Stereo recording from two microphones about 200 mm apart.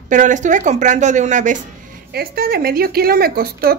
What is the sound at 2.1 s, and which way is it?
A woman's voice, 50° right (ahead or behind).